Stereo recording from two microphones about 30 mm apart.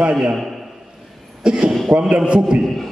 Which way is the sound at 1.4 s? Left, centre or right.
Right.